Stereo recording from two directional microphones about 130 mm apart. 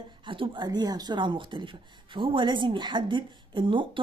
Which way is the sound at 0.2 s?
40° right (ahead or behind).